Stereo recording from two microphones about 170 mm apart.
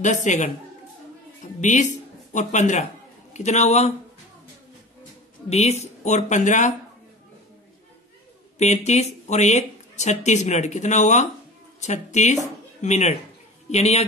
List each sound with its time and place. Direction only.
0.0 s speech: 45° left (ahead or behind)
1.6 s a woman's voice: 45° left (ahead or behind)
5.5 s speech: 40° left (ahead or behind)
8.5 s a man's voice: 40° left (ahead or behind)